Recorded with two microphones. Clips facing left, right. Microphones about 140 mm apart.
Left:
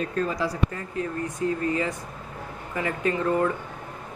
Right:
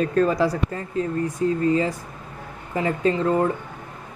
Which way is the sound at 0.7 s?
30° right (ahead or behind).